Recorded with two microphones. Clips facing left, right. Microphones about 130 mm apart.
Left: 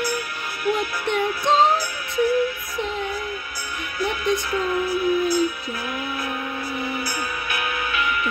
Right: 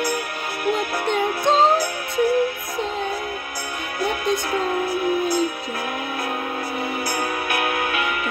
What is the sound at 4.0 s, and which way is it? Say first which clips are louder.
Music: even; 50° right (ahead or behind).